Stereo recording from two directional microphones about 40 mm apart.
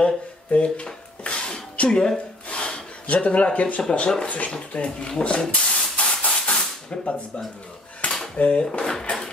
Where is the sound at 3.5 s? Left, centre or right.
Left.